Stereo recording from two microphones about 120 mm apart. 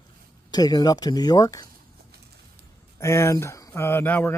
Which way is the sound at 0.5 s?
35° left (ahead or behind).